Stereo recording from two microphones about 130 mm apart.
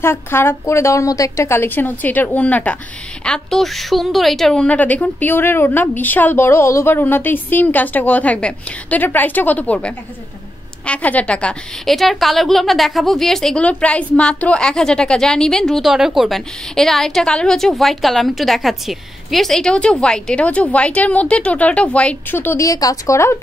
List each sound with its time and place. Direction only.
0.0 s a woman's voice: 20° left (ahead or behind)